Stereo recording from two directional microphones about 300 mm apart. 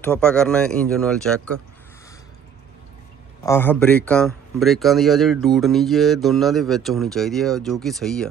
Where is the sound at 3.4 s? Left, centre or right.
Centre.